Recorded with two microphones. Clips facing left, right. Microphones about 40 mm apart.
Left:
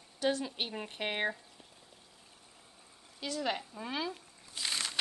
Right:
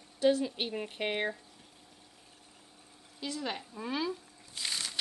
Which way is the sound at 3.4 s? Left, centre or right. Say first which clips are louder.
Left 2 dB; centre.